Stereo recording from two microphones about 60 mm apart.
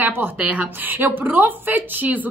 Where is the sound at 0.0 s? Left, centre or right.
Right.